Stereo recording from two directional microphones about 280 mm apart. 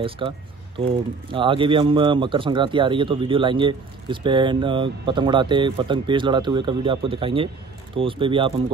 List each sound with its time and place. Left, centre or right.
0.2 s speech: centre